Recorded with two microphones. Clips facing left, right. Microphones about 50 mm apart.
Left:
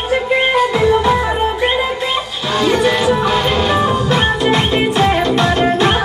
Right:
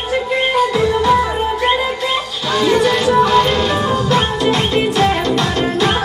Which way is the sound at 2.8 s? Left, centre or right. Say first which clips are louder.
Right 1 dB; centre.